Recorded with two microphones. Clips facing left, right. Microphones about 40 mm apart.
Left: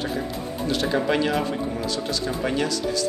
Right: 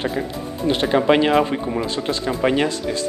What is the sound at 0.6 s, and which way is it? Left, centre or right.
Speech, right.